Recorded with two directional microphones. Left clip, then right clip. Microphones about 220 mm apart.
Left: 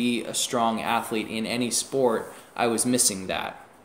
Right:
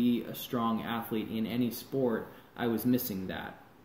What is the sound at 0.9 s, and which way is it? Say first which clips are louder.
Speech: left 9 dB; 45° left (ahead or behind).